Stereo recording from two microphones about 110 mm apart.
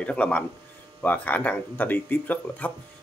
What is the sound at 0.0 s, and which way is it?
Speech, 10° left (ahead or behind).